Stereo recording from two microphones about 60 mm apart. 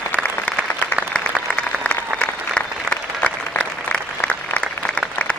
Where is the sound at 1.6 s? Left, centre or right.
Left.